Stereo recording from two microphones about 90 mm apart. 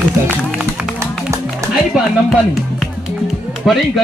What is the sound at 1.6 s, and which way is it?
Music, 35° right (ahead or behind).